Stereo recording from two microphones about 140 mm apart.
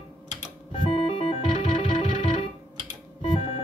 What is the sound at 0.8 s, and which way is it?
Music, 45° left (ahead or behind).